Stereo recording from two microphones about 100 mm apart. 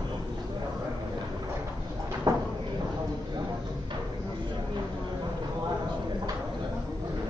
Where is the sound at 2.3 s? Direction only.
40° right (ahead or behind).